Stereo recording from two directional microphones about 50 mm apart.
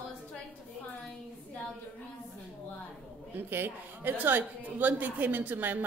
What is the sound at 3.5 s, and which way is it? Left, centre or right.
Speech, right.